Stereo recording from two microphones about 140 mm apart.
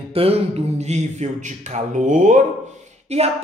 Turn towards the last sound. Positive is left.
turn(degrees=-50)  # may be behind; listen again after turning